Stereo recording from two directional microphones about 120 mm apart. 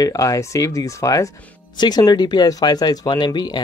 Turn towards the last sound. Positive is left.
turn(degrees=35)  # may be behind; listen again after turning